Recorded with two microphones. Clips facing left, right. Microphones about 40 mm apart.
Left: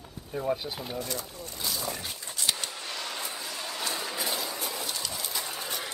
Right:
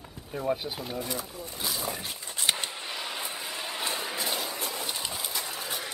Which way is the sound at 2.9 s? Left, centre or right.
Centre.